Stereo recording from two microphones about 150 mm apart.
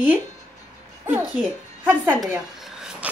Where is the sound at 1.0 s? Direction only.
10° right (ahead or behind).